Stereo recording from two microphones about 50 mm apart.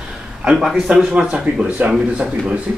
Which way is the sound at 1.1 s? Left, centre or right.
Right.